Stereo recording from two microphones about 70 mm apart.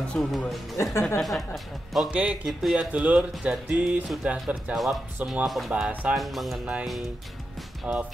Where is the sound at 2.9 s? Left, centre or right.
Centre.